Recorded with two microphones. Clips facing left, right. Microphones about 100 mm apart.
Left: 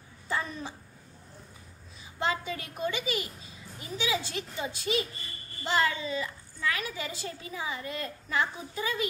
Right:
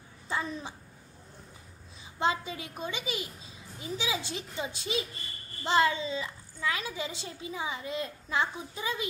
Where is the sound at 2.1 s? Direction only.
20° right (ahead or behind).